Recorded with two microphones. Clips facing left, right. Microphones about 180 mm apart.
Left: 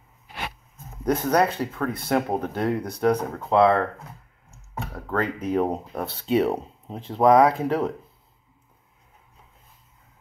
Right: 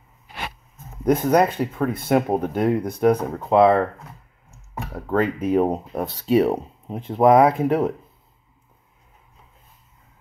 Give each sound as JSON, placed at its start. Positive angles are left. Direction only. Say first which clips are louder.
{"t": 1.0, "sound": "speech", "louder": "right 4 dB", "side_deg": -15}
{"t": 5.1, "sound": "speech", "louder": "right 5 dB", "side_deg": -20}
{"t": 6.2, "sound": "speech", "louder": "right 4 dB", "side_deg": -5}
{"t": 7.1, "sound": "speech", "louder": "right 2 dB", "side_deg": -20}